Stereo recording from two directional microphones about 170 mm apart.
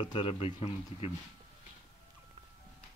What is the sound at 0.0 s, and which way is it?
Speech, 35° left (ahead or behind).